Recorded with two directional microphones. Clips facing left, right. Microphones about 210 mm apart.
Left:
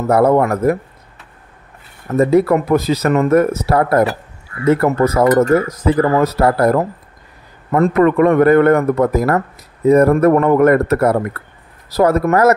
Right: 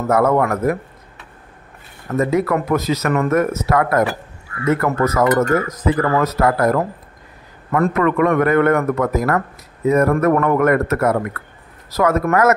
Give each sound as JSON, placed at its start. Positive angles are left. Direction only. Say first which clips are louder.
{"t": 0.1, "sound": "speech", "louder": "left 3 dB", "side_deg": 35}
{"t": 2.1, "sound": "speech", "louder": "left 5 dB", "side_deg": 30}